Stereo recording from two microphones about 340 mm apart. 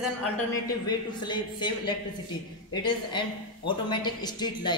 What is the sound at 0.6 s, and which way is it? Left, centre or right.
A woman's voice, centre.